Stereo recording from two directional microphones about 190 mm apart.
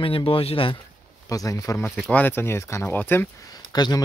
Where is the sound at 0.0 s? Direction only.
30° left (ahead or behind).